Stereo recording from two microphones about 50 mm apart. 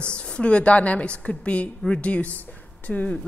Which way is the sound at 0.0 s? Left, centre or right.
Left.